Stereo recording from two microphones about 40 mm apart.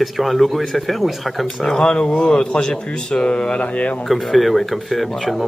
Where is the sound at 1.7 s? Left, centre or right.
Left.